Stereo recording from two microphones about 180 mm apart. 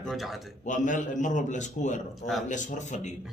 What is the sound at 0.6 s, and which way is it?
A man's voice, 45° left (ahead or behind).